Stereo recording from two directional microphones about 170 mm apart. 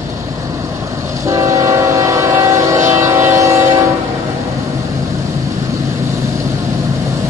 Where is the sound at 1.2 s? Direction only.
20° right (ahead or behind).